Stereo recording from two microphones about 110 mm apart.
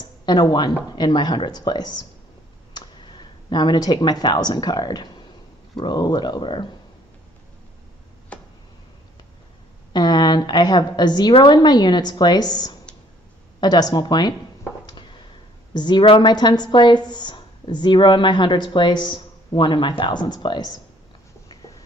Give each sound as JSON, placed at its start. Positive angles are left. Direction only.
{"t": 0.2, "sound": "a woman's voice", "side_deg": 45}
{"t": 8.3, "sound": "a sound", "side_deg": 10}
{"t": 9.9, "sound": "a woman's voice", "side_deg": 40}
{"t": 15.7, "sound": "a woman's voice", "side_deg": 45}